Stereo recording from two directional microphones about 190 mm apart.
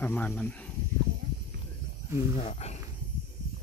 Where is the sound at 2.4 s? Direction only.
35° left (ahead or behind).